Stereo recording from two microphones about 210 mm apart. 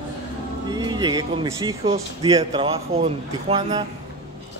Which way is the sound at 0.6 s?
20° right (ahead or behind).